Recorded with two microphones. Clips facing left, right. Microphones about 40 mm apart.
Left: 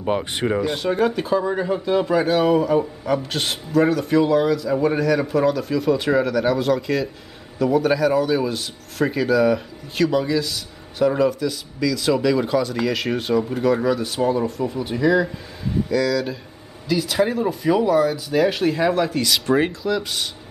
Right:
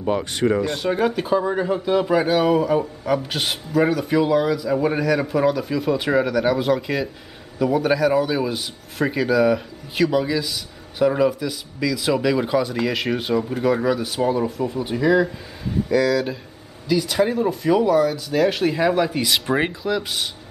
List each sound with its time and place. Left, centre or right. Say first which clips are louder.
0.0 s speech: right 1 dB; centre
0.8 s speech: even; centre